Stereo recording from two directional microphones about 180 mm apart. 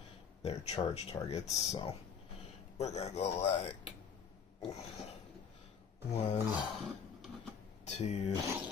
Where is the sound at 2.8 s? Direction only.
35° left (ahead or behind).